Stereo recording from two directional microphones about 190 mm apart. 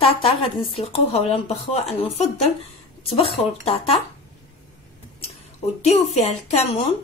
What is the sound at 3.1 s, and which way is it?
Speech, 30° left (ahead or behind).